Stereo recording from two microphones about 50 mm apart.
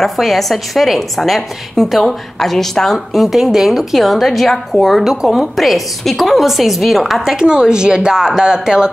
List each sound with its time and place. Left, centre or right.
0.0 s a woman's voice: centre
5.1 s a woman's voice: centre
7.3 s a woman's voice: centre